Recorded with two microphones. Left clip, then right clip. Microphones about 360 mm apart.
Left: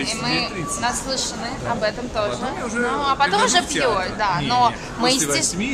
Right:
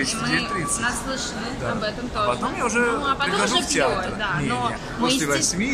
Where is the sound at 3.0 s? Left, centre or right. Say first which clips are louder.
Left 4 dB; centre.